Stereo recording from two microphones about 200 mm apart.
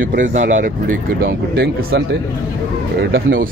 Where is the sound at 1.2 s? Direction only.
55° right (ahead or behind).